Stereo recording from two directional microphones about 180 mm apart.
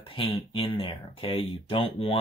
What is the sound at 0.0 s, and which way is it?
Speech, 30° left (ahead or behind).